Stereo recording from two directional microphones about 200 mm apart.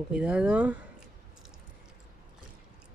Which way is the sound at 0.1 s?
5° right (ahead or behind).